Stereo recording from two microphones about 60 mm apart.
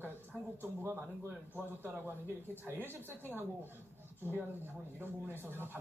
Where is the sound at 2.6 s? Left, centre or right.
Right.